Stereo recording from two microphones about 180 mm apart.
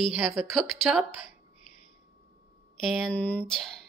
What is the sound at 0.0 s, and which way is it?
Speech, 5° right (ahead or behind).